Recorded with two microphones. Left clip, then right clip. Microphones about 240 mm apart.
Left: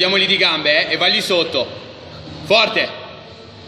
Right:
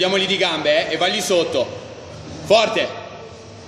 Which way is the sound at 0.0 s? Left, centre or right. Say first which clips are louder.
Left 3 dB; centre.